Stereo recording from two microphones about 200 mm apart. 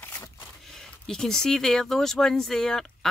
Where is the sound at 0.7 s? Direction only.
Centre (ahead or behind).